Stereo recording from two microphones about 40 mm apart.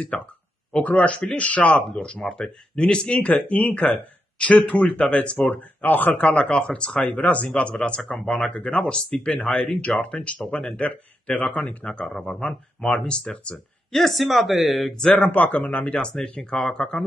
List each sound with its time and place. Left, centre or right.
0.1 s speech: left
1.9 s speech: left
3.3 s speech: left
5.5 s speech: left
7.1 s speech: left
7.4 s speech: left
12.2 s speech: centre
13.9 s speech: centre
15.1 s speech: left
15.8 s speech: left
16.4 s speech: centre